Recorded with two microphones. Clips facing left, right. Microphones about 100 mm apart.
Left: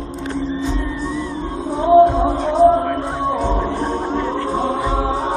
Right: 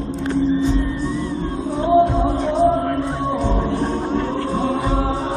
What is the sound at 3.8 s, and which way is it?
Music, 20° left (ahead or behind).